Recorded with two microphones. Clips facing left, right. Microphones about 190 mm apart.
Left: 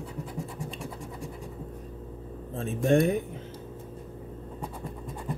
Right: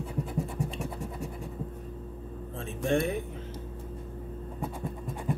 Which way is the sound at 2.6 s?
40° left (ahead or behind).